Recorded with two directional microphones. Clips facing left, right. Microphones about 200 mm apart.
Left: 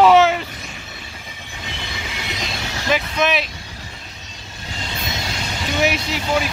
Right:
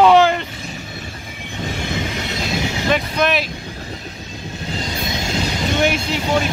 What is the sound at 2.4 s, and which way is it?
Vehicle, centre (ahead or behind).